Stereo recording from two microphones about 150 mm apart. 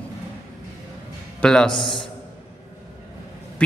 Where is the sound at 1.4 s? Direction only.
5° left (ahead or behind).